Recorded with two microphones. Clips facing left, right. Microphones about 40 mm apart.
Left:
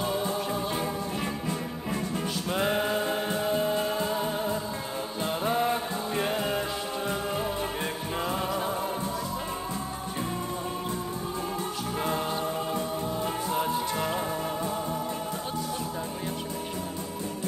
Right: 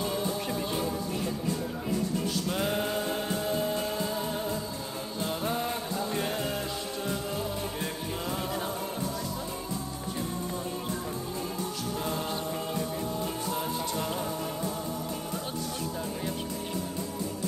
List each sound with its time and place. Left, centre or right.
0.0 s music: left
0.4 s music: centre
2.5 s music: centre
5.2 s mantra: left
12.0 s music: left